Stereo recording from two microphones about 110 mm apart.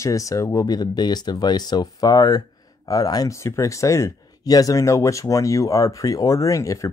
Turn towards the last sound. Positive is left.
turn(degrees=30)  # may be behind; listen again after turning